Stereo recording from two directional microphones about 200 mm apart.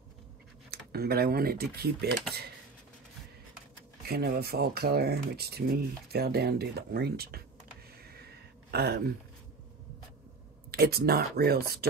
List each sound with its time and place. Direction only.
0.7 s speech: 50° right (ahead or behind)
4.1 s speech: 50° right (ahead or behind)
8.0 s a sound: 50° right (ahead or behind)
10.7 s speech: 50° right (ahead or behind)